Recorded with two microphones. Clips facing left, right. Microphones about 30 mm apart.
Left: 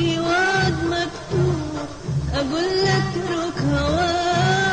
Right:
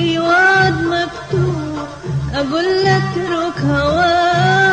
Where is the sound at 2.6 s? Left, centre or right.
Centre.